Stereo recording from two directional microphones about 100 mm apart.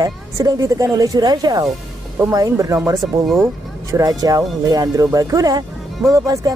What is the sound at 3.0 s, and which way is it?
Speech, centre (ahead or behind).